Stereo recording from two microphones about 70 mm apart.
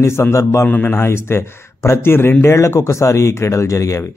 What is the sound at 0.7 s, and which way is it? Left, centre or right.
Speech, left.